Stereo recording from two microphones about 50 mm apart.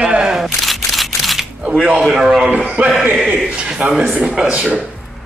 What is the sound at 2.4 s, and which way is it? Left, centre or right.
Speech, right.